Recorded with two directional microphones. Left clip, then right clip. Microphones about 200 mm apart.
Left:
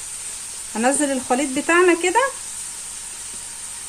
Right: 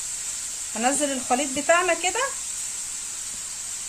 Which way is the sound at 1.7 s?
45° left (ahead or behind).